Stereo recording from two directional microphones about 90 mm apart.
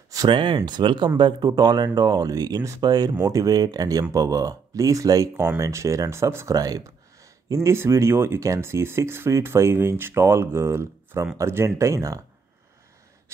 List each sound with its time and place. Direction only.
0.3 s speech: 70° right (ahead or behind); by 12.2 s 35° right (ahead or behind)